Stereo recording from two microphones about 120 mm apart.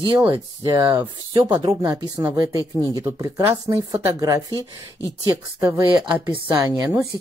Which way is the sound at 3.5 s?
40° right (ahead or behind).